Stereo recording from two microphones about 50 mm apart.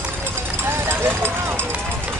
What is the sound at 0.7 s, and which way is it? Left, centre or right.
Vehicle, right.